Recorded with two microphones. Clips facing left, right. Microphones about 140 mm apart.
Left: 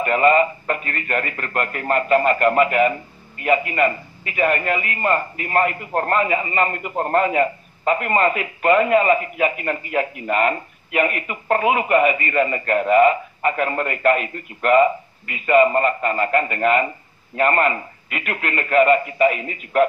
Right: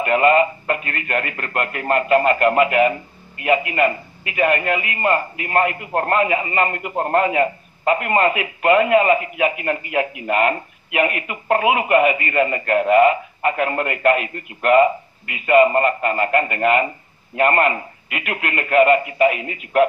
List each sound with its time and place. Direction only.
0.0 s speech: 5° right (ahead or behind)